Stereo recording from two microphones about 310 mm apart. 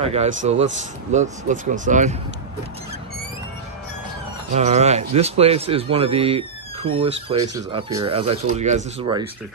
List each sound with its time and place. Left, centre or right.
0.0 s speech: centre
4.6 s a man's voice: right